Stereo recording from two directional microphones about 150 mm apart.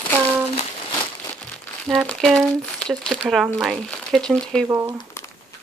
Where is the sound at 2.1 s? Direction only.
5° left (ahead or behind).